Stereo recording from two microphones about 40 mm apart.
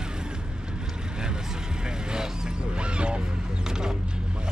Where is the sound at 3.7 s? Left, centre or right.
Centre.